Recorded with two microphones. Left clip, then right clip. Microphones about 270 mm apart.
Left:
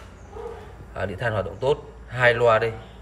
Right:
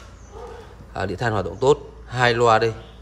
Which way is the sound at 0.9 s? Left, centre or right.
Centre.